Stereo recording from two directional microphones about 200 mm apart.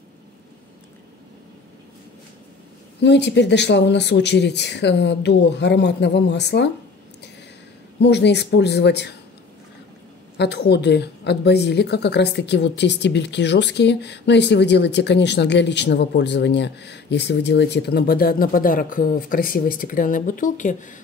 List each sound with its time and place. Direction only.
3.0 s a woman's voice: 60° left (ahead or behind)
8.0 s a woman's voice: 60° left (ahead or behind)
10.3 s a woman's voice: 55° left (ahead or behind); by 21.0 s 40° left (ahead or behind)